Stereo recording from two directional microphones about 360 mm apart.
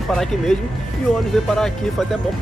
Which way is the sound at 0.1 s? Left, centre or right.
Centre.